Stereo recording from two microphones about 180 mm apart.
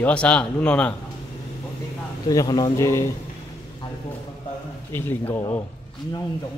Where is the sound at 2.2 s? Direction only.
20° left (ahead or behind).